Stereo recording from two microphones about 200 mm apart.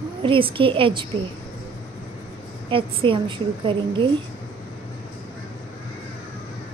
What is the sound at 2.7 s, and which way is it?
A woman's voice, 25° right (ahead or behind).